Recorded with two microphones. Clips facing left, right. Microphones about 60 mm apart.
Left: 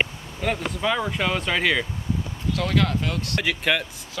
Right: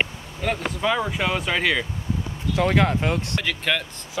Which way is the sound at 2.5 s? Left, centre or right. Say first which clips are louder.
Right 3 dB; right.